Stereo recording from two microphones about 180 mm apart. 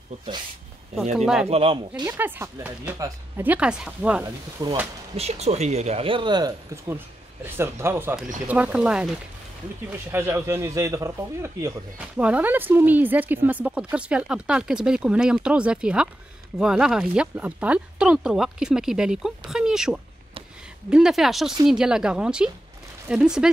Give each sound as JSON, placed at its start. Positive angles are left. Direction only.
{"t": 1.1, "sound": "speech", "side_deg": -5}
{"t": 1.5, "sound": "speech", "side_deg": -30}
{"t": 2.0, "sound": "speech", "side_deg": -10}
{"t": 4.6, "sound": "speech", "side_deg": -20}
{"t": 5.1, "sound": "speech", "side_deg": -35}
{"t": 10.1, "sound": "speech", "side_deg": -15}